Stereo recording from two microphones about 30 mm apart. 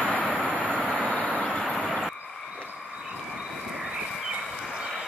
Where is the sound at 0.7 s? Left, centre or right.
Right.